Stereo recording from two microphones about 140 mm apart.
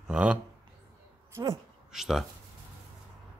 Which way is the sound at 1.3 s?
20° right (ahead or behind).